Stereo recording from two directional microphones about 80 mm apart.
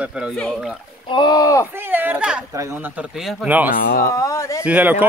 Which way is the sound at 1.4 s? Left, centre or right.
Left.